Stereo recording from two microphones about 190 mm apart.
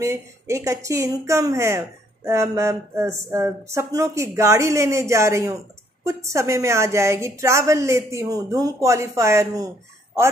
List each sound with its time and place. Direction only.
0.0 s speech: 15° right (ahead or behind)